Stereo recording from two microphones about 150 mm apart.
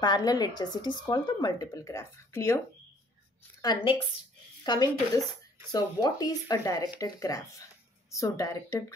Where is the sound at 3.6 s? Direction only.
30° left (ahead or behind).